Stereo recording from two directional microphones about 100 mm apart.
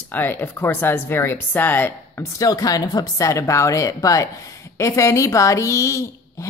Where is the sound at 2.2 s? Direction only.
35° left (ahead or behind).